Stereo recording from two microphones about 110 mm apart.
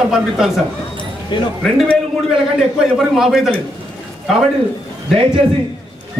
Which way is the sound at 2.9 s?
5° right (ahead or behind).